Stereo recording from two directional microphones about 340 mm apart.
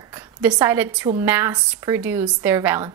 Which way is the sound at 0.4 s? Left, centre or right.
Centre.